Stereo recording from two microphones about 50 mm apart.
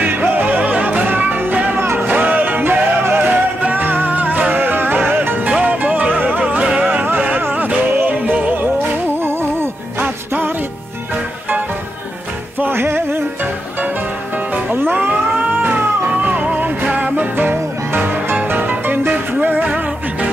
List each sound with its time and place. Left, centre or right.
0.1 s music: right
5.7 s music: right
6.9 s music: right
9.2 s music: right
12.5 s music: right
14.5 s music: right
15.0 s cat: right
16.2 s music: right